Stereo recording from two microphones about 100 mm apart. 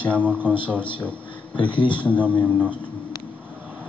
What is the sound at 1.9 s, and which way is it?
Speech, 15° left (ahead or behind).